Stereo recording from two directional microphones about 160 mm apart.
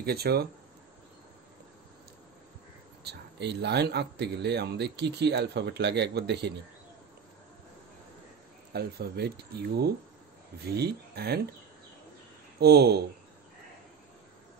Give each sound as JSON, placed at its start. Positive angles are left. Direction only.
{"t": 0.0, "sound": "speech", "side_deg": -80}
{"t": 3.0, "sound": "speech", "side_deg": -90}
{"t": 8.7, "sound": "speech", "side_deg": -80}
{"t": 12.5, "sound": "speech", "side_deg": -90}